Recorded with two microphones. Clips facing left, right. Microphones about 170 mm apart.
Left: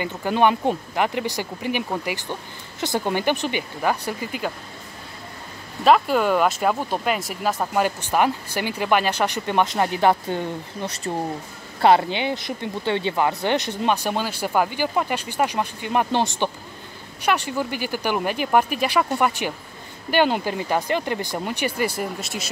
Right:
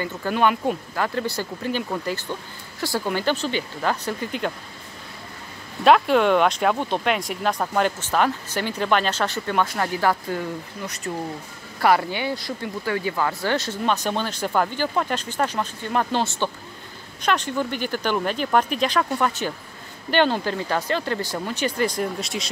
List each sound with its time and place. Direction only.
0.0 s speech: 20° left (ahead or behind)
5.9 s speech: centre (ahead or behind)